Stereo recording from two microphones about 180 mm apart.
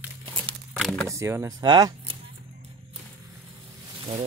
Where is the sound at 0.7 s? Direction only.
Centre (ahead or behind).